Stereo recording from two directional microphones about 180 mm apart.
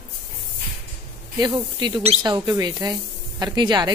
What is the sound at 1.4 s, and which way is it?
Speech, 20° right (ahead or behind).